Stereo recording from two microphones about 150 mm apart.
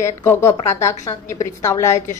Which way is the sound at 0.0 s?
15° left (ahead or behind).